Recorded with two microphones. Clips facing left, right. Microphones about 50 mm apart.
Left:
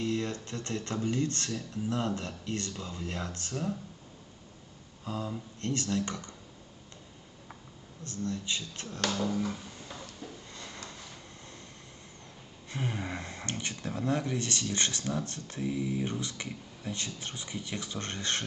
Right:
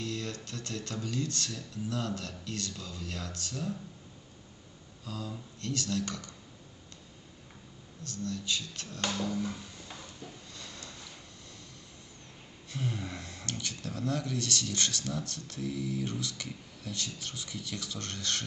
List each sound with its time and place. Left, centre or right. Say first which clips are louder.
0.0 s speech: left 5 dB; left
5.0 s speech: left 4 dB; left
8.0 s speech: left 2 dB; left
10.5 s a sound: left 2 dB; left
12.6 s speech: left 1 dB; left